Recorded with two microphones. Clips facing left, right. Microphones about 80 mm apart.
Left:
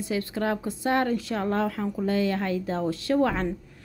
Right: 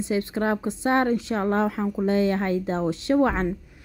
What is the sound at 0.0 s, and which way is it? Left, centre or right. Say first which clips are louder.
A woman's voice: right 3 dB; right.